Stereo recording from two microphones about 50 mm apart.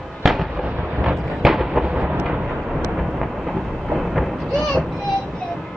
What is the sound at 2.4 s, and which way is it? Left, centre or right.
Vehicle, centre.